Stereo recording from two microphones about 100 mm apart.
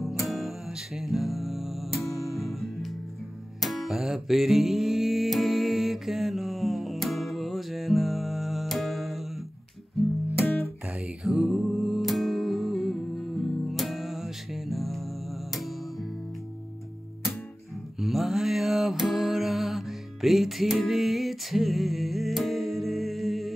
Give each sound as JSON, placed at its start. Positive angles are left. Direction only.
{"t": 0.0, "sound": "music", "side_deg": 0}
{"t": 10.3, "sound": "music", "side_deg": 25}
{"t": 10.9, "sound": "music", "side_deg": -10}
{"t": 17.9, "sound": "mantra", "side_deg": -5}